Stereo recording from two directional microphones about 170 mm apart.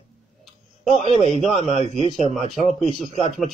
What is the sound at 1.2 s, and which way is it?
Speech, 35° left (ahead or behind).